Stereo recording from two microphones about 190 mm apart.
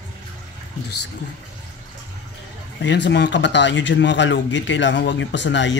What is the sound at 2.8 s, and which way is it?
Speech, 65° left (ahead or behind).